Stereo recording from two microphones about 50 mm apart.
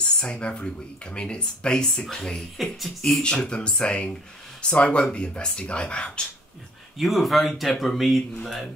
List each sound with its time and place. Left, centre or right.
0.2 s speech: left; by 2.9 s centre
3.0 s speech: centre
7.0 s speech: centre